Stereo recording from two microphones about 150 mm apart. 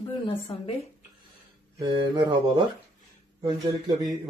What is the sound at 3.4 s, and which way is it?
Speech, 25° right (ahead or behind).